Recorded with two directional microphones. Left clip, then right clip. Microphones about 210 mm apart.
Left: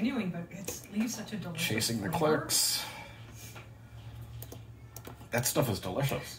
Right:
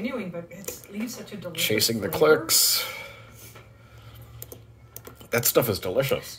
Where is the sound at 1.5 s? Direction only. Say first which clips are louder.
Right 9 dB; 45° right (ahead or behind).